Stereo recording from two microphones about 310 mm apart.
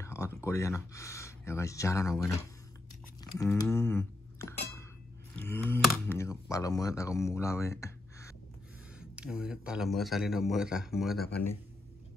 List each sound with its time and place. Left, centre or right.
0.0 s speech: centre
9.1 s speech: centre